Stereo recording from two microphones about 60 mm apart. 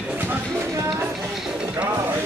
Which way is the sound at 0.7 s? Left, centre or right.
Right.